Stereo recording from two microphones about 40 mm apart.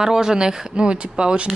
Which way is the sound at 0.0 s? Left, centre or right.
Centre.